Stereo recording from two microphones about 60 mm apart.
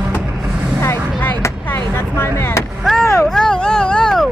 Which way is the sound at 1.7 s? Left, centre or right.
Left.